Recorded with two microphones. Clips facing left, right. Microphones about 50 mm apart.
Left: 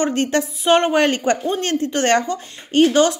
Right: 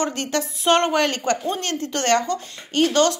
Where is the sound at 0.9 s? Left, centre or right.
Left.